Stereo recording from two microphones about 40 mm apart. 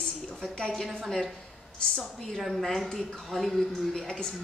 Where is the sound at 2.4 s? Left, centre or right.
Centre.